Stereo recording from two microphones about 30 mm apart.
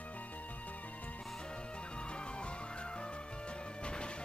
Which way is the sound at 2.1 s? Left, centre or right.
Left.